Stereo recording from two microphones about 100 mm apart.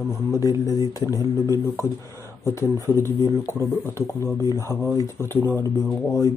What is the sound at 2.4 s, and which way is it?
Speech, 30° left (ahead or behind).